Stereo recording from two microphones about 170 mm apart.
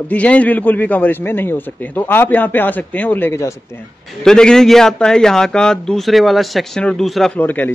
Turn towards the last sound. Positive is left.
turn(degrees=10)  # may be behind; listen again after turning